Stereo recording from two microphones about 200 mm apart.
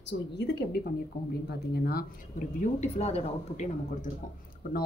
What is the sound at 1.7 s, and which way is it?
Speech, 50° left (ahead or behind).